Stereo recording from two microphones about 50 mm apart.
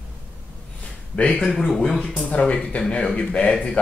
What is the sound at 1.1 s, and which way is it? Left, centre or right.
Speech, left.